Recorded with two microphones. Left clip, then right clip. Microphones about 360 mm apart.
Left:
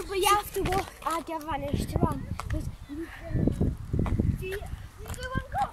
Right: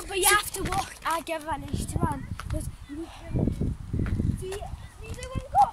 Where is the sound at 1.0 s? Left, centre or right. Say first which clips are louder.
Right 2 dB; right.